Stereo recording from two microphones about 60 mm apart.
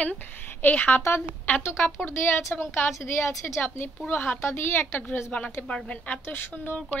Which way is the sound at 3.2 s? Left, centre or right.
Left.